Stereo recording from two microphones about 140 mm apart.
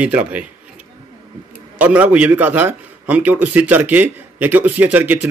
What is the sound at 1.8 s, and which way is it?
A man's voice, 10° right (ahead or behind).